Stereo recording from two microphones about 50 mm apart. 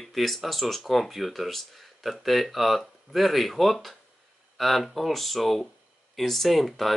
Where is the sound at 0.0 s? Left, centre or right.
Centre.